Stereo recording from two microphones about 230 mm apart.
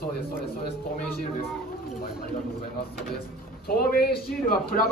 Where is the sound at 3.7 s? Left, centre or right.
Left.